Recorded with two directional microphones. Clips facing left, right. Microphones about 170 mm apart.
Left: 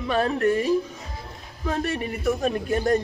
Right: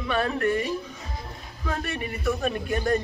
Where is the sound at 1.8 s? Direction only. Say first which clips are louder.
Left 8 dB; 35° left (ahead or behind).